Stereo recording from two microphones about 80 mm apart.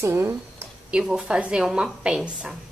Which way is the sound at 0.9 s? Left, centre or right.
Centre.